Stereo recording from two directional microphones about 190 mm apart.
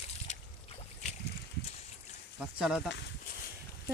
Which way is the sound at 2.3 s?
5° right (ahead or behind).